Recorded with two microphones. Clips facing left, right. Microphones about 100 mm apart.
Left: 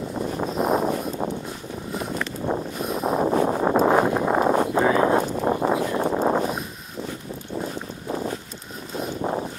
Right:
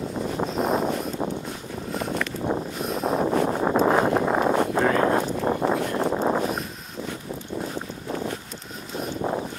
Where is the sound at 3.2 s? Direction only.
30° left (ahead or behind).